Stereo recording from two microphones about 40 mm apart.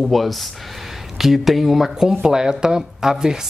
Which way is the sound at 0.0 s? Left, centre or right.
Centre.